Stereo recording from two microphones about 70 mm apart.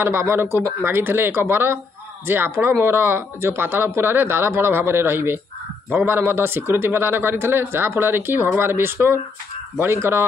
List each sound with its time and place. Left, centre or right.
0.0 s speech: right